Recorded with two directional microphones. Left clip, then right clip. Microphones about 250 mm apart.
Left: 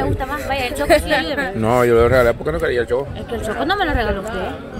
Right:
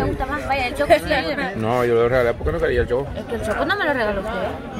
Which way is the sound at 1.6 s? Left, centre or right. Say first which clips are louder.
Left 5 dB; centre.